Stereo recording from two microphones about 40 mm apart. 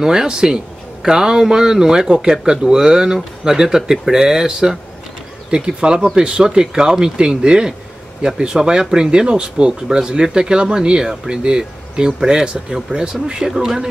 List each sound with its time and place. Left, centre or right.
0.0 s speech: centre